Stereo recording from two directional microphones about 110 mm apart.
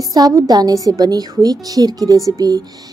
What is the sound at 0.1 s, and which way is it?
A woman's voice, 30° right (ahead or behind).